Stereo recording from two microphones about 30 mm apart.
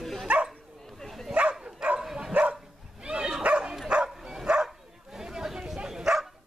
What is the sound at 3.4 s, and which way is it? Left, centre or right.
Dog, right.